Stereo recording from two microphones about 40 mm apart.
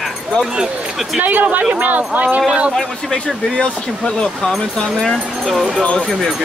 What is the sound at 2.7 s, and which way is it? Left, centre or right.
Speech, centre.